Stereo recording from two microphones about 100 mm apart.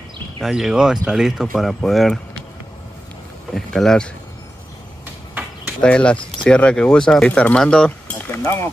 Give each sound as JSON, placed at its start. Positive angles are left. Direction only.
{"t": 0.4, "sound": "speech", "side_deg": -5}
{"t": 3.5, "sound": "speech", "side_deg": 5}
{"t": 5.8, "sound": "speech", "side_deg": 10}
{"t": 8.4, "sound": "speech", "side_deg": 25}